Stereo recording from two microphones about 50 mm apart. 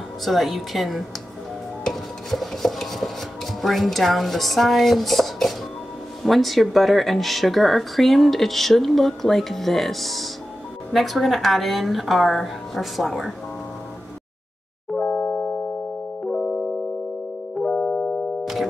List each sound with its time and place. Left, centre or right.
0.2 s speech: centre
1.9 s dishes: centre
3.6 s speech: centre
15.0 s a sound: centre
17.7 s music: centre
18.4 s music: centre